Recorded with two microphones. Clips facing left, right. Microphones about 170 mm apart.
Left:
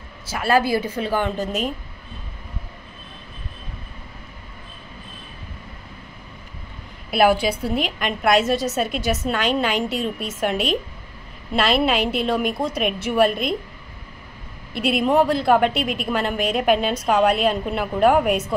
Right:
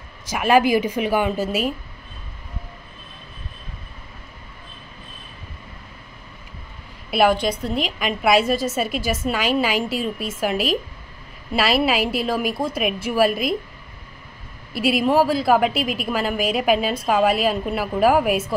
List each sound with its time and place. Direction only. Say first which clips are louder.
0.3 s a woman's voice: right 3 dB; 15° right (ahead or behind)
7.1 s a woman's voice: left 1 dB; 5° left (ahead or behind)
14.7 s a woman's voice: right 1 dB; centre (ahead or behind)